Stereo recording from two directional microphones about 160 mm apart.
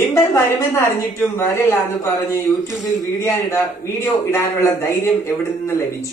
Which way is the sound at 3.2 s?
20° left (ahead or behind).